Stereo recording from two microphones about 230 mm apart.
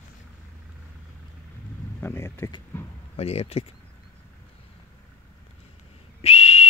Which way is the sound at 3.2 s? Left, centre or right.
Left.